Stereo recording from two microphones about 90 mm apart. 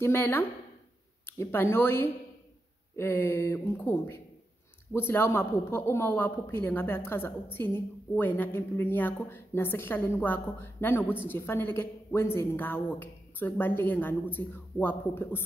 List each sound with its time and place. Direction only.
0.0 s a woman's voice: 25° left (ahead or behind)